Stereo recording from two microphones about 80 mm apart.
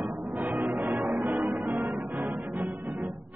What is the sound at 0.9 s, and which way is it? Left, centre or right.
Music, right.